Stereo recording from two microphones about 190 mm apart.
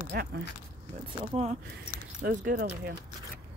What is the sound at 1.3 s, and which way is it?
Speech, 35° right (ahead or behind).